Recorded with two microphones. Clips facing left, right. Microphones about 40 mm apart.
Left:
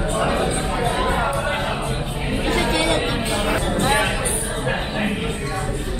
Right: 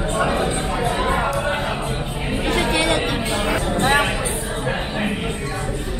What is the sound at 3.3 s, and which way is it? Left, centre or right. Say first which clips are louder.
Music: even; centre.